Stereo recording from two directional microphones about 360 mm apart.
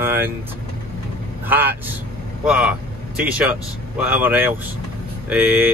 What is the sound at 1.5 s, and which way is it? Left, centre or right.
Speech, centre.